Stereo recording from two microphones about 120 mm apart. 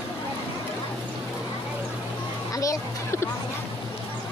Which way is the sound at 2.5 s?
30° left (ahead or behind).